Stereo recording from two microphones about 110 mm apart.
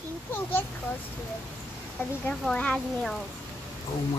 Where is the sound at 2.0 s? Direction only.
20° left (ahead or behind).